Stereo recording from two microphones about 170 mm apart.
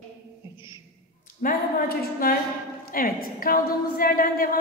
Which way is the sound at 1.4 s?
60° left (ahead or behind).